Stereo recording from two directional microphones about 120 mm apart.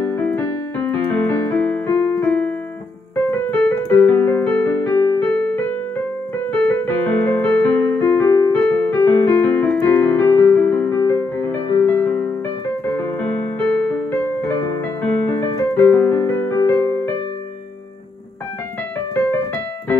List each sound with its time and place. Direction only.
0.1 s keyboard: 15° left (ahead or behind)
3.5 s keyboard: 10° left (ahead or behind)
5.4 s music: 10° left (ahead or behind)
6.5 s keyboard: 15° left (ahead or behind)
8.5 s keyboard: 10° left (ahead or behind)
14.8 s music: 15° left (ahead or behind)